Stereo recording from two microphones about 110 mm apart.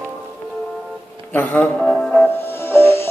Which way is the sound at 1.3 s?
15° left (ahead or behind).